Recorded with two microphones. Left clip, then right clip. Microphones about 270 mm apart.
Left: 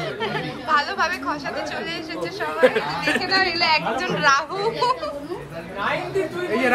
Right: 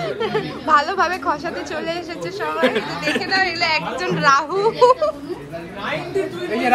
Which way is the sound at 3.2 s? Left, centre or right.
Centre.